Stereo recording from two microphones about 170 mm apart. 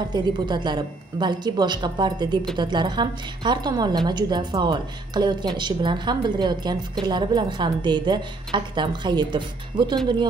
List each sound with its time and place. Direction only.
0.1 s a woman's voice: 25° right (ahead or behind)